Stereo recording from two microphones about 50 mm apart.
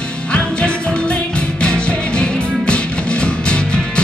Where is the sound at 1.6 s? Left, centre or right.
Centre.